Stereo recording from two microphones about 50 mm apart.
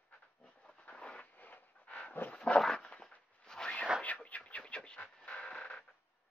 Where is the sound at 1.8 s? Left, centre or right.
Left.